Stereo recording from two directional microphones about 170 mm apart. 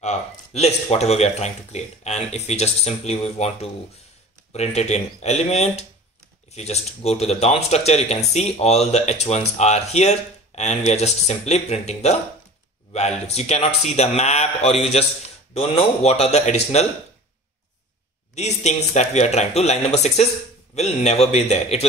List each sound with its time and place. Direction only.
0.0 s speech: 40° left (ahead or behind)
18.3 s speech: 40° left (ahead or behind)